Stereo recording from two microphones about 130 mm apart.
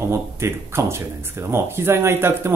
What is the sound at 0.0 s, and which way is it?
Speech, 20° right (ahead or behind).